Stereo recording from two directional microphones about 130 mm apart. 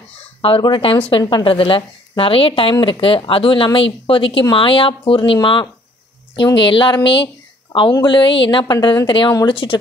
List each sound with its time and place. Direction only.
0.4 s a woman's voice: 40° left (ahead or behind)